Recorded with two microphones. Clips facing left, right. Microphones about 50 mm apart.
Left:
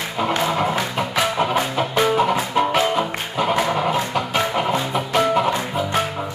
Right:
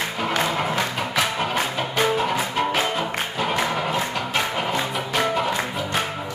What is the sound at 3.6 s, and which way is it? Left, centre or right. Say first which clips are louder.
Dog: left 4 dB; centre.